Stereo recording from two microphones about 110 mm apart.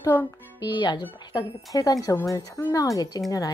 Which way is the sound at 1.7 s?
35° left (ahead or behind).